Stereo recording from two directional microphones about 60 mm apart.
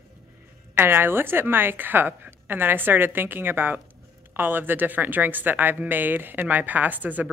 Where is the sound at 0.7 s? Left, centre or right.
Right.